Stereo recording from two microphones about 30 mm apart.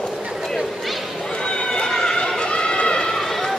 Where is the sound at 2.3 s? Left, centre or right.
Left.